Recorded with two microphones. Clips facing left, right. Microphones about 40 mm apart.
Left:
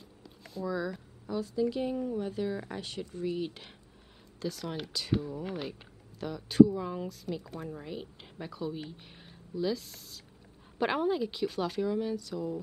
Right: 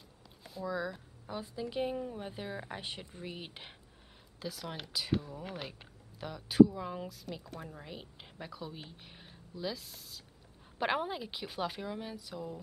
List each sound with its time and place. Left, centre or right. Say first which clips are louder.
0.2 s a woman's voice: left 4 dB; centre
4.4 s speech: left 5 dB; centre